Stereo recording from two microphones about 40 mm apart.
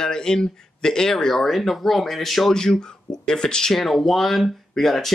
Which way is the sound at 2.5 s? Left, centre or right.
Centre.